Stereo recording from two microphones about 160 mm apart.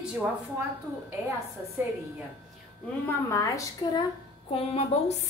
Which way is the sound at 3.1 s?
20° left (ahead or behind).